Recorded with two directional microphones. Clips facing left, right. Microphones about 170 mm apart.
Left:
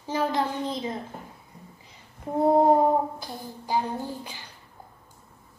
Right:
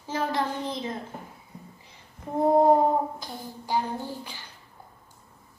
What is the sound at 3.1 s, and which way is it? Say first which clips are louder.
Speech: left 1 dB; 15° left (ahead or behind).